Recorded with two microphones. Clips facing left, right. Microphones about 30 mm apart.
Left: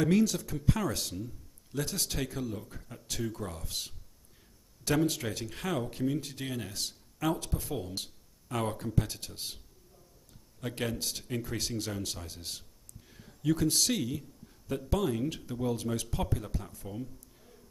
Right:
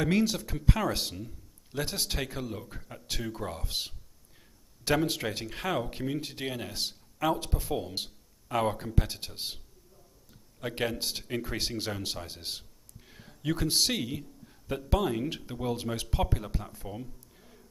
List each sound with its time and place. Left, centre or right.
0.0 s speech: right
0.4 s a man's voice: right
10.6 s speech: right
15.2 s speech: right
16.7 s a sound: centre